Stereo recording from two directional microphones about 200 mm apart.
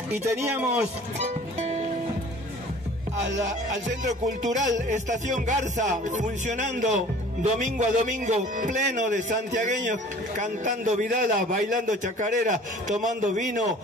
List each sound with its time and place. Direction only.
0.1 s speech: 10° right (ahead or behind)
3.8 s music: 35° right (ahead or behind)
10.3 s music: 40° right (ahead or behind)